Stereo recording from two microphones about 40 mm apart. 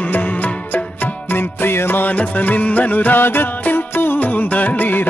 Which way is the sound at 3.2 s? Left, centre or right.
Left.